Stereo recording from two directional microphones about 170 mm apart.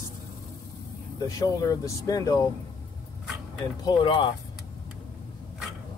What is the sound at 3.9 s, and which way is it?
Speech, 25° left (ahead or behind).